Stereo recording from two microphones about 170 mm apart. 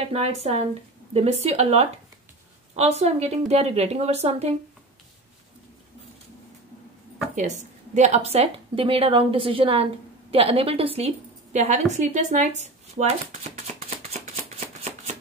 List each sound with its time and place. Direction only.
0.1 s a woman's voice: 40° right (ahead or behind)
7.3 s a woman's voice: 45° right (ahead or behind)